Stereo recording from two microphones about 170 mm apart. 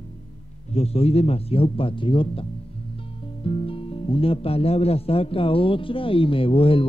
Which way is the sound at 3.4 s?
30° left (ahead or behind).